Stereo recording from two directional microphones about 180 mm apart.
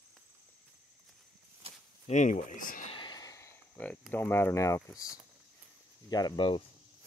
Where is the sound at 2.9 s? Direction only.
25° left (ahead or behind).